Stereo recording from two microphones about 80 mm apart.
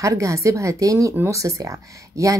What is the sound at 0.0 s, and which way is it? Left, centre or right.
Speech, right.